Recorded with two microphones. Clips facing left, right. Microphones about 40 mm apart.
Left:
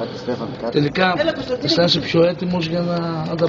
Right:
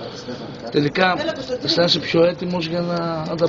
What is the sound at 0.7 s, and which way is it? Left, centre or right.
Speech, centre.